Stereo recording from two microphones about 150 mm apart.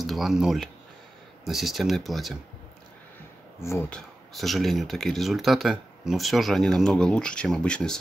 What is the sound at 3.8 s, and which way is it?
Speech, 5° left (ahead or behind).